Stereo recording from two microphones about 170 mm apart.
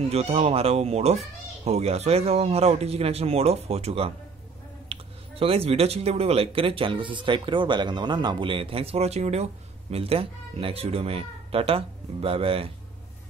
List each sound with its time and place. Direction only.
0.1 s speech: 35° right (ahead or behind)